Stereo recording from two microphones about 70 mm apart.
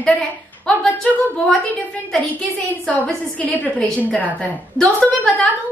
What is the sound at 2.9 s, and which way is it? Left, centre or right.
A woman's voice, left.